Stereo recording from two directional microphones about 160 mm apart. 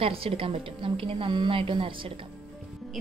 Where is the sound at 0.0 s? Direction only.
35° right (ahead or behind).